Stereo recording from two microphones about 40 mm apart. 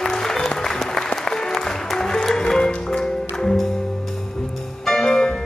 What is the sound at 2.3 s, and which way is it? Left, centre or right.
Music, centre.